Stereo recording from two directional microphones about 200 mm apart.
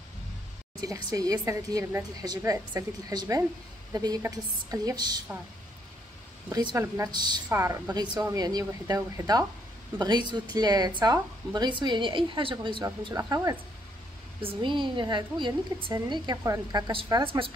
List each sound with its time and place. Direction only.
0.7 s a woman's voice: 20° right (ahead or behind)
6.5 s a woman's voice: 20° right (ahead or behind)
7.4 s a woman's voice: 10° right (ahead or behind)
14.4 s a woman's voice: 25° right (ahead or behind)